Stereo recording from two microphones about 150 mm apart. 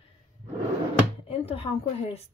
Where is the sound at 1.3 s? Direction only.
40° left (ahead or behind).